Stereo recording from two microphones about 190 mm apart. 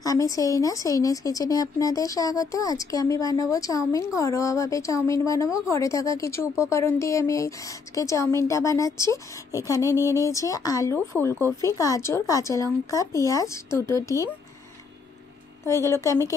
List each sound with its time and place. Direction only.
0.0 s speech: 20° left (ahead or behind)
15.6 s speech: 15° left (ahead or behind)